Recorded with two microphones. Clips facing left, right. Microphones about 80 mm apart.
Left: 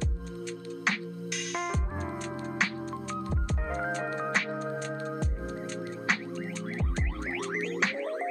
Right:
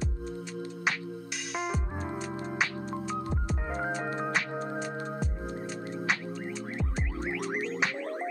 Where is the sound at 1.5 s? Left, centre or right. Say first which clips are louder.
Right 1 dB; centre.